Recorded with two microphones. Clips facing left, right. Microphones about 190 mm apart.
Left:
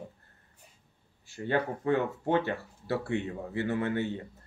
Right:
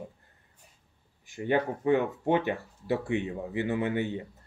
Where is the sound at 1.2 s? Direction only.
15° right (ahead or behind).